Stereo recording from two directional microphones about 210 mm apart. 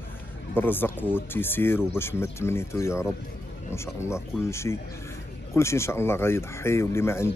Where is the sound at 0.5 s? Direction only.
10° left (ahead or behind).